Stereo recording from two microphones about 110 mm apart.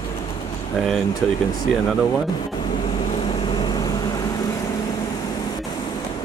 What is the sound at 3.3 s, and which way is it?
Vehicle, 50° left (ahead or behind).